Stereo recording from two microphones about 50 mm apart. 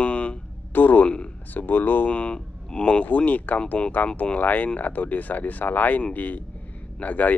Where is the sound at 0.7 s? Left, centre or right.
Left.